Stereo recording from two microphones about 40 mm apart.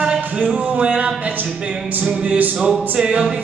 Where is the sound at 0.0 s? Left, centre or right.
Right.